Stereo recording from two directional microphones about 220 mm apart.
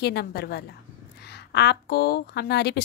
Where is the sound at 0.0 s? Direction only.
45° left (ahead or behind).